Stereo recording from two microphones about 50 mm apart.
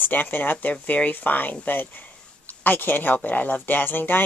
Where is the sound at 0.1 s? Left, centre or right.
Left.